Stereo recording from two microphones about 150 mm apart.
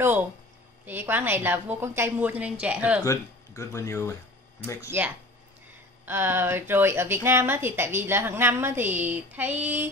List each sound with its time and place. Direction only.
0.8 s a woman's voice: 15° right (ahead or behind)
3.0 s speech: 20° left (ahead or behind)
4.9 s a woman's voice: 15° right (ahead or behind)